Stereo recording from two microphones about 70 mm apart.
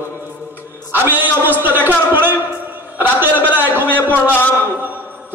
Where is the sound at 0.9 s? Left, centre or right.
Right.